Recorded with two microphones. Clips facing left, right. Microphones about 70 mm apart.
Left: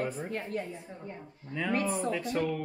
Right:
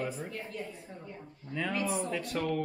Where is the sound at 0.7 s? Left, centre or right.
Left.